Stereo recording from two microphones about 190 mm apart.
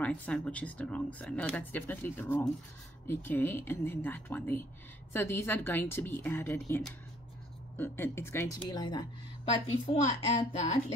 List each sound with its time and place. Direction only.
0.0 s a woman's voice: 5° left (ahead or behind); by 10.8 s 35° left (ahead or behind)